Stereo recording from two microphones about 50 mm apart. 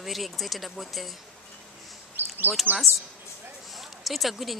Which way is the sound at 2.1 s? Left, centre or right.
Right.